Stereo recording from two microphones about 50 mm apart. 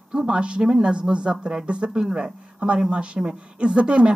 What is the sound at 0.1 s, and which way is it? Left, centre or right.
Speech, centre.